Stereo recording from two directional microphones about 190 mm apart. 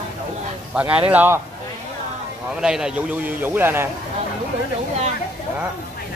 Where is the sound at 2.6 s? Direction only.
5° right (ahead or behind).